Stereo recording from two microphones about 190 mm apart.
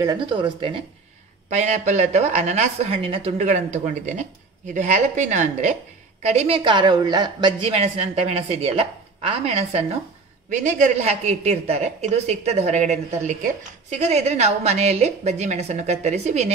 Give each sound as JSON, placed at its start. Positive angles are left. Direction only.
{"t": 0.0, "sound": "speech", "side_deg": -20}
{"t": 1.5, "sound": "a woman's voice", "side_deg": -40}